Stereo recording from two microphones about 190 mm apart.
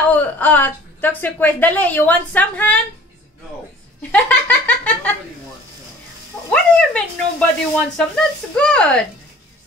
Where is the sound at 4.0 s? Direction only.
10° left (ahead or behind).